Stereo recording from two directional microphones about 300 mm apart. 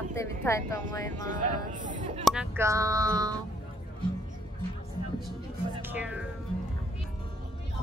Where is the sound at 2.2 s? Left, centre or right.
Centre.